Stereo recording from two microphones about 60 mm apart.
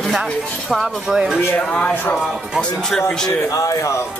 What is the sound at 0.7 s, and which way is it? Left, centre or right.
Speech, centre.